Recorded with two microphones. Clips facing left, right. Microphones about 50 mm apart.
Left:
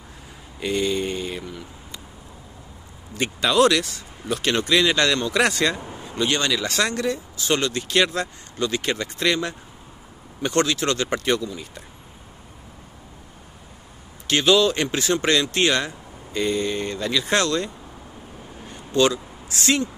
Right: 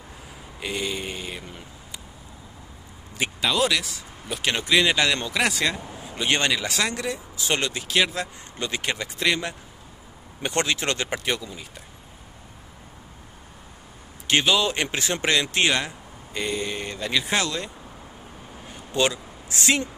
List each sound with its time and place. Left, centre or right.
0.6 s a sound: centre
3.2 s speech: centre
6.2 s speech: right
6.7 s speech: centre
7.3 s speech: right
7.7 s speech: centre
8.5 s speech: right
10.4 s speech: right
11.1 s speech: centre
14.2 s a man's voice: centre
18.9 s a sound: right